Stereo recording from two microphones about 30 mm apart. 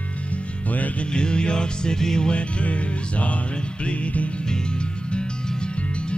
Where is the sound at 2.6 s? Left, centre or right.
Left.